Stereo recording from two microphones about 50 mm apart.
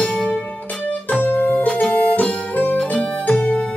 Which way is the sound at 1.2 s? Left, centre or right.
Left.